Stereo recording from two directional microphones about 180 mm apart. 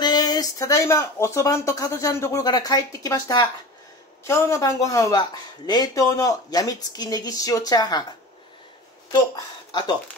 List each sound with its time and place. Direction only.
0.0 s speech: 20° left (ahead or behind)
9.7 s speech: 25° left (ahead or behind)